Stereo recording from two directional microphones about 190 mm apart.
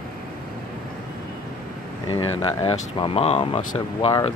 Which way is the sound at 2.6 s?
30° left (ahead or behind).